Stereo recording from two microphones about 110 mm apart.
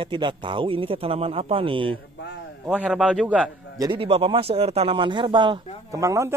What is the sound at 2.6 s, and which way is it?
Speech, 10° right (ahead or behind).